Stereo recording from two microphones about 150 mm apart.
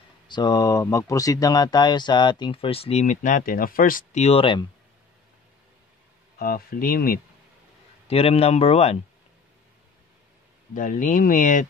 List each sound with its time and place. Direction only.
0.3 s speech: 25° left (ahead or behind); by 4.0 s 70° left (ahead or behind)
4.1 s speech: 45° left (ahead or behind)
6.3 s speech: 75° left (ahead or behind)
8.1 s speech: 40° left (ahead or behind)
10.7 s speech: 60° left (ahead or behind)